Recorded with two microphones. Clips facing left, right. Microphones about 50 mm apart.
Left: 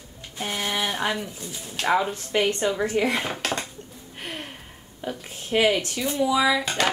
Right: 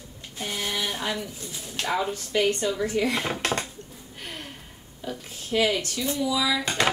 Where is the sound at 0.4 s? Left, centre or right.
Left.